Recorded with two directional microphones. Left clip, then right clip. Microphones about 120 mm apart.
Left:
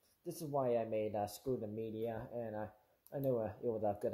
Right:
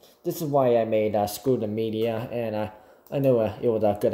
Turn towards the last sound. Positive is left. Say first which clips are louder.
# right 15 dB
turn(degrees=-15)  # may be behind; listen again after turning